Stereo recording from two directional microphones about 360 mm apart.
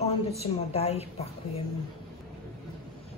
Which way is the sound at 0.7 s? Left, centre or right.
Centre.